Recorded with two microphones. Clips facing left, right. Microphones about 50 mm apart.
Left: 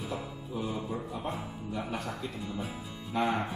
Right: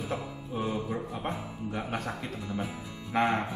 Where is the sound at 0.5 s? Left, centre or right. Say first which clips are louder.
Right 3 dB; right.